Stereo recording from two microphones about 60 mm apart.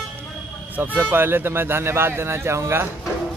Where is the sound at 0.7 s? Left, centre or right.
Right.